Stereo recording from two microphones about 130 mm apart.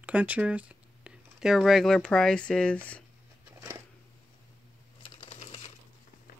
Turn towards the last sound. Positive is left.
turn(degrees=50)  # may be behind; listen again after turning